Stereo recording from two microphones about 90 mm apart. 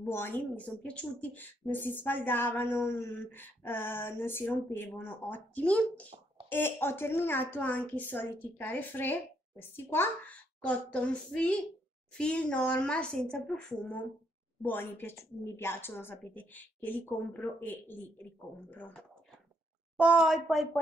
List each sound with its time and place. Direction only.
0.0 s speech: 25° left (ahead or behind)
6.5 s speech: 25° left (ahead or behind); by 13.4 s 10° left (ahead or behind)
14.6 s speech: 20° left (ahead or behind)
20.0 s a woman's voice: 15° right (ahead or behind)
20.4 s speech: centre (ahead or behind)